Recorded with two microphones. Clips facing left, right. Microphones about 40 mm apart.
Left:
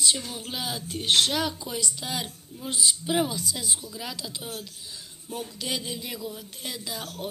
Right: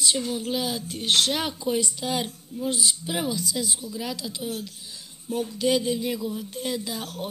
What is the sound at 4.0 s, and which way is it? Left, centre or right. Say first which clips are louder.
Speech: right 4 dB; centre.